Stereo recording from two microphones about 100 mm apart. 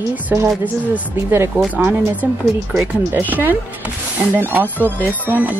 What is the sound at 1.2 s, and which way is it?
Speech, 25° right (ahead or behind).